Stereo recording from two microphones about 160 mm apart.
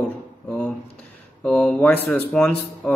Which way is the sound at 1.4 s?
5° left (ahead or behind).